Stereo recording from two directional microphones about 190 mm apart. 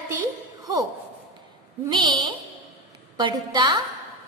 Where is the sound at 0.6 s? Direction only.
20° right (ahead or behind).